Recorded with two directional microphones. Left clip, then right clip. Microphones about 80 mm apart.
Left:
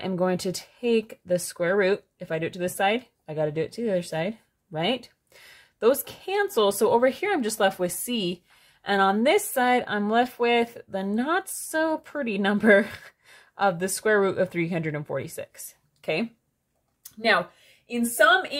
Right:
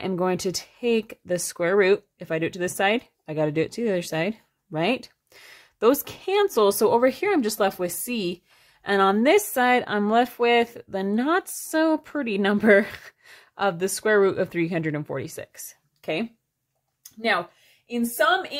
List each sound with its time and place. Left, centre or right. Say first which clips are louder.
0.0 s speech: right 1 dB; right
17.2 s speech: left 2 dB; centre
18.2 s a woman's voice: left 2 dB; centre